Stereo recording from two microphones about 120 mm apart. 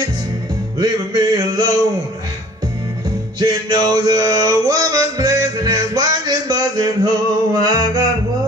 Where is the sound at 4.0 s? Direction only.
30° right (ahead or behind).